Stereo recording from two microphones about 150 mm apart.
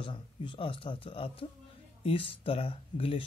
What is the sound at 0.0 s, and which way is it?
Speech, 35° left (ahead or behind).